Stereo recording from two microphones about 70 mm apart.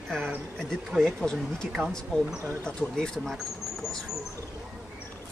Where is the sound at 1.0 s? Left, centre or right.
Centre.